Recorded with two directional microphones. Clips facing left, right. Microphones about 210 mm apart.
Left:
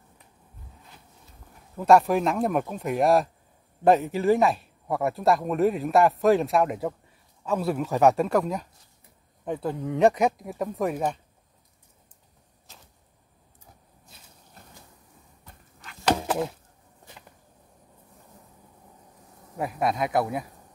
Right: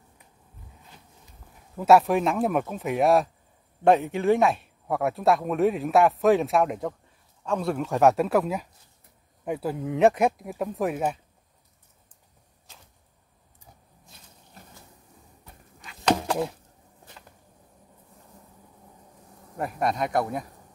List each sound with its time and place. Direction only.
1.8 s speech: 5° right (ahead or behind)
16.1 s a sound: 5° left (ahead or behind)
19.5 s speech: centre (ahead or behind)